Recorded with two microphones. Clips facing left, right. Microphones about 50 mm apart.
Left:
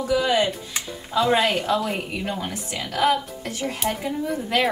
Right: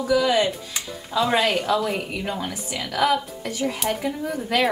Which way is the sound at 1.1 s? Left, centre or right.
Centre.